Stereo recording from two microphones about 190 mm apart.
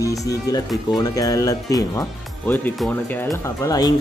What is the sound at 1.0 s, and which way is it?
Speech, 20° left (ahead or behind).